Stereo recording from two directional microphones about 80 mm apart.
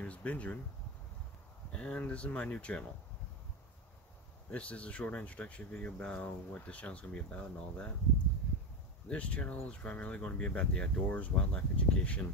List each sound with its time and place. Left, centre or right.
0.0 s speech: centre
1.7 s speech: centre
4.5 s speech: centre
9.1 s speech: centre